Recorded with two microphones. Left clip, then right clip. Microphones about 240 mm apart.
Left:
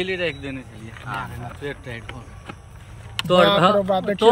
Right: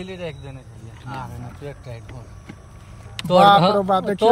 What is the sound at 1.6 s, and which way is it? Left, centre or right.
Speech, right.